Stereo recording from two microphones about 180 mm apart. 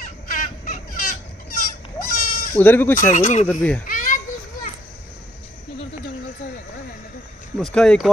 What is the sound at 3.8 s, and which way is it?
Children playing, 50° left (ahead or behind).